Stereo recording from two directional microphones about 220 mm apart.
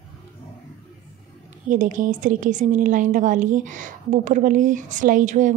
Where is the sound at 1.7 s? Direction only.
35° right (ahead or behind).